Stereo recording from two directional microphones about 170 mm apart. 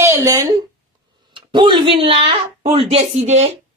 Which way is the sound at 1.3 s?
30° right (ahead or behind).